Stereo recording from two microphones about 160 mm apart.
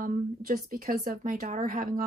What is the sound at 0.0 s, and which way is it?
A woman's voice, 60° right (ahead or behind).